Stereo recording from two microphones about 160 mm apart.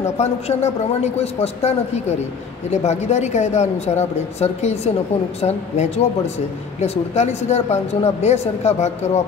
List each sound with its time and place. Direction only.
0.0 s speech: 40° left (ahead or behind)